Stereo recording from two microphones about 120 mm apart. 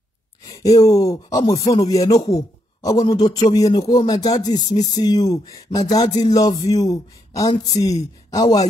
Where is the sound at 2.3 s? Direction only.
30° left (ahead or behind).